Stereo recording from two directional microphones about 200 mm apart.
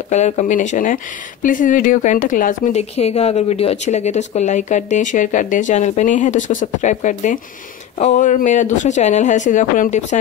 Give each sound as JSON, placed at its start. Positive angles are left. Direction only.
{"t": 0.1, "sound": "speech", "side_deg": 35}